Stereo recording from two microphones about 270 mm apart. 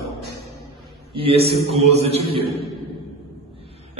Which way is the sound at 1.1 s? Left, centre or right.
Right.